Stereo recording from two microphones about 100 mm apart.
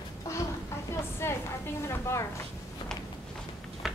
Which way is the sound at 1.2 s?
25° left (ahead or behind).